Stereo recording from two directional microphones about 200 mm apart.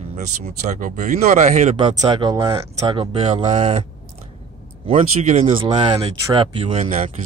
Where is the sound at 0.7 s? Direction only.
40° right (ahead or behind).